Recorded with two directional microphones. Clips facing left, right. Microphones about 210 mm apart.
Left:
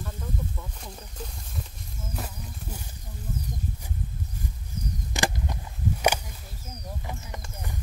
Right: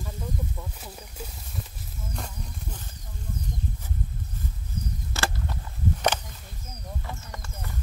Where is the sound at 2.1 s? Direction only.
5° left (ahead or behind).